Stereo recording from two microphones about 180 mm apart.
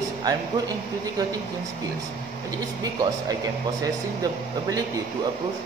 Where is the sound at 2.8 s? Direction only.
20° right (ahead or behind).